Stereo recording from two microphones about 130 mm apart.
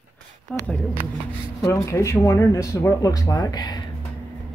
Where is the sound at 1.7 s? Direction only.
25° left (ahead or behind).